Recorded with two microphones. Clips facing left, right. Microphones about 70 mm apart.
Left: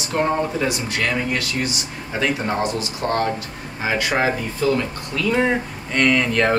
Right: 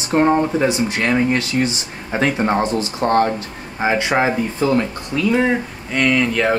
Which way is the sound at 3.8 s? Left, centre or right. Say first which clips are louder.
Right 3 dB; right.